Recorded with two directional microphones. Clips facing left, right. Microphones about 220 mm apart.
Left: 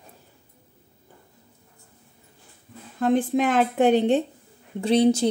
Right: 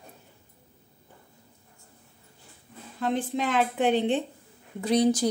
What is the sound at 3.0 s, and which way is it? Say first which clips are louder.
A woman's voice: left 7 dB; 50° left (ahead or behind).